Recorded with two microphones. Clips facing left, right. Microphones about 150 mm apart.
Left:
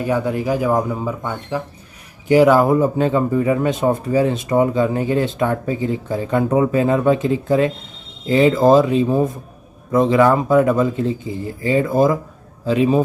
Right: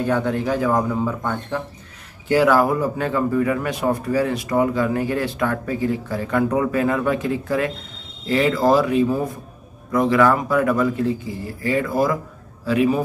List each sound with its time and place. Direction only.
0.0 s speech: 10° left (ahead or behind)